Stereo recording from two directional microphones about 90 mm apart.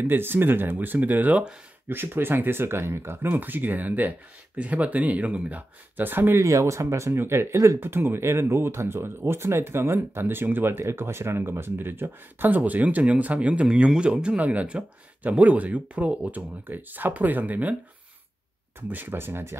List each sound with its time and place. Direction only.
0.0 s speech: 25° right (ahead or behind)
18.8 s speech: 20° right (ahead or behind)